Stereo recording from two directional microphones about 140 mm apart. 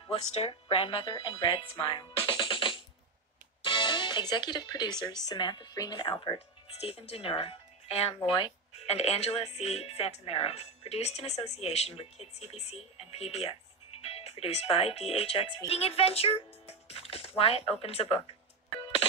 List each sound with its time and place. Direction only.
0.1 s speech: 45° left (ahead or behind)
1.8 s music: 35° left (ahead or behind)
3.6 s speech: 35° left (ahead or behind)
6.3 s speech: 45° left (ahead or behind)